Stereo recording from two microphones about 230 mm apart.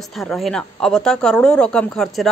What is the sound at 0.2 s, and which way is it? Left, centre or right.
Speech, centre.